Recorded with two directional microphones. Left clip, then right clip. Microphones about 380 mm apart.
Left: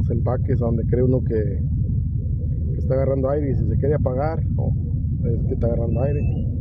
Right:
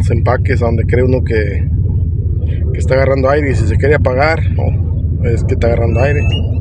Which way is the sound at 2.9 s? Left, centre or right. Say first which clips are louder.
Right 10 dB; left.